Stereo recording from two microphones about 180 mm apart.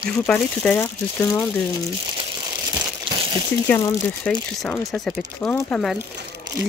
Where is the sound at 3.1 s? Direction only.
30° right (ahead or behind).